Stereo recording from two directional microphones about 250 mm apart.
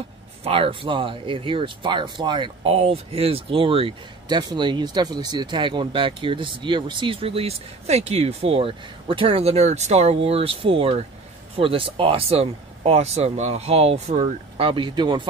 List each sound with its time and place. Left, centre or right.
0.4 s speech: right